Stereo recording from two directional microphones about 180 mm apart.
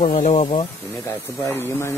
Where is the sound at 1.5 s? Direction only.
10° left (ahead or behind).